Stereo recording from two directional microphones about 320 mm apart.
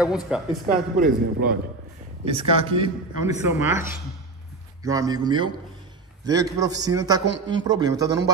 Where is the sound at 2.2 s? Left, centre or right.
Centre.